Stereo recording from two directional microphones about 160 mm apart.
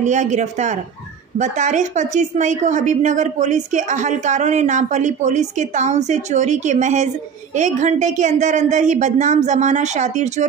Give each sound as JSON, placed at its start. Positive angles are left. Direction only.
{"t": 0.0, "sound": "a woman's voice", "side_deg": -50}